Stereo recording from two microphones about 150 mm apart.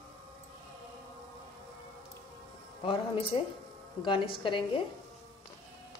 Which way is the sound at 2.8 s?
35° left (ahead or behind).